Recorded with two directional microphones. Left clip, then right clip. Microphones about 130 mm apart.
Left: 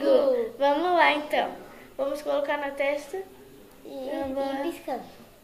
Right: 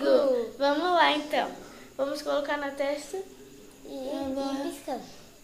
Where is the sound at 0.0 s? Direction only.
35° left (ahead or behind).